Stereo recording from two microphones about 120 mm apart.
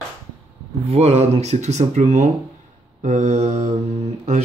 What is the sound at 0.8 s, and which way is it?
Mantra, 60° right (ahead or behind).